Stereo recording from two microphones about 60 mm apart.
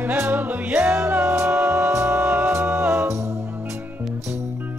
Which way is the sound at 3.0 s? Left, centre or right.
Right.